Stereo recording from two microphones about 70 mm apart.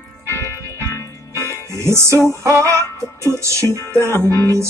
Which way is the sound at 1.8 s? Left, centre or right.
Right.